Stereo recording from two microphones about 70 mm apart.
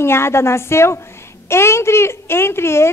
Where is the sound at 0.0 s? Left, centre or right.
Left.